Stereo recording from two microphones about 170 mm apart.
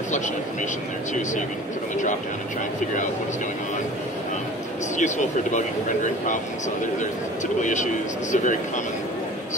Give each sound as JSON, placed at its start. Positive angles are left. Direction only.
{"t": 4.9, "sound": "speech", "side_deg": 45}
{"t": 7.6, "sound": "speech", "side_deg": 45}